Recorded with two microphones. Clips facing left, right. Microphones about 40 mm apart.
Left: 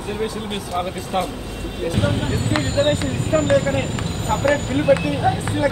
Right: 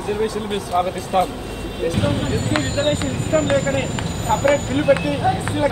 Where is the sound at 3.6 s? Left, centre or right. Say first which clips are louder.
Right 1 dB; centre.